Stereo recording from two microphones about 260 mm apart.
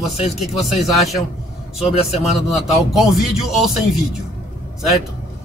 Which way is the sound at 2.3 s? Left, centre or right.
Centre.